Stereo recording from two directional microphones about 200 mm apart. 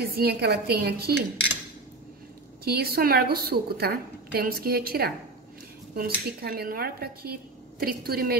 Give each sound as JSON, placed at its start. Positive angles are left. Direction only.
{"t": 0.1, "sound": "a woman's voice", "side_deg": -50}
{"t": 2.6, "sound": "a woman's voice", "side_deg": -50}